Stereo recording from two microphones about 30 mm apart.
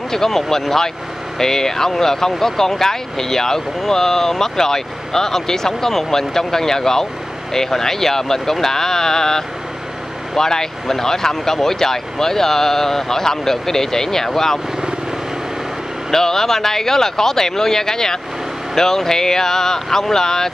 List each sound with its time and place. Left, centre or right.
0.1 s speech: centre
16.1 s speech: centre